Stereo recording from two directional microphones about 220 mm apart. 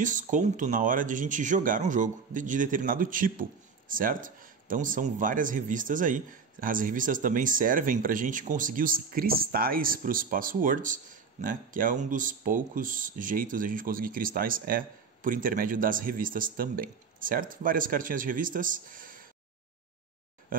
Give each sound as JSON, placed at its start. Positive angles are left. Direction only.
{"t": 0.0, "sound": "speech", "side_deg": -35}